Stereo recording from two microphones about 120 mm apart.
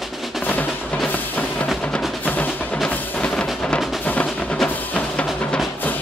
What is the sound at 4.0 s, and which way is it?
Music, 15° left (ahead or behind).